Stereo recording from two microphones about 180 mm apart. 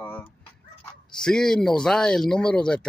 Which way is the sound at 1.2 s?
5° left (ahead or behind).